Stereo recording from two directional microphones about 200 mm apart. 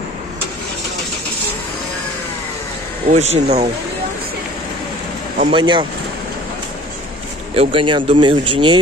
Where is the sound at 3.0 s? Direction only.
35° right (ahead or behind).